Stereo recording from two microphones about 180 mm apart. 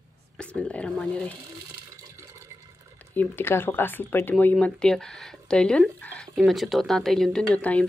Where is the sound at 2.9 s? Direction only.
10° left (ahead or behind).